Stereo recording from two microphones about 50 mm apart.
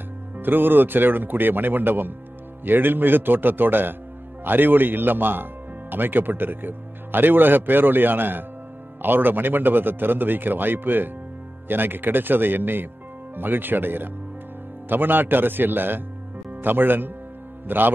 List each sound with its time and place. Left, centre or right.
0.4 s speech: right